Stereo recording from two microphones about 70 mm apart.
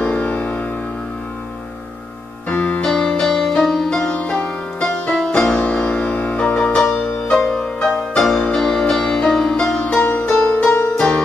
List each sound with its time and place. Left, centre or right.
0.0 s music: centre
2.5 s music: left
2.8 s music: centre
10.0 s music: left
10.7 s music: left
11.0 s harp: centre